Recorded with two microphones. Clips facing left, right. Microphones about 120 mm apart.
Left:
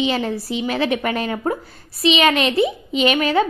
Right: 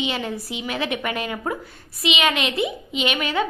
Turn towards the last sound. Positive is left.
turn(degrees=35)  # may be behind; listen again after turning